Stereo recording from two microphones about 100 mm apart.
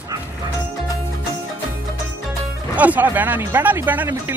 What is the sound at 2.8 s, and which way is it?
Speech, 15° right (ahead or behind).